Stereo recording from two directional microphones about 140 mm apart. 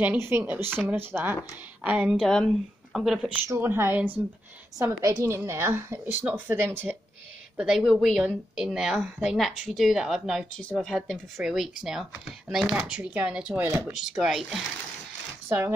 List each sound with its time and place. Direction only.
0.0 s a woman's voice: 15° right (ahead or behind)
3.4 s a woman's voice: 20° right (ahead or behind)
7.5 s speech: 5° right (ahead or behind)
10.6 s speech: 10° left (ahead or behind)
15.4 s speech: 15° right (ahead or behind)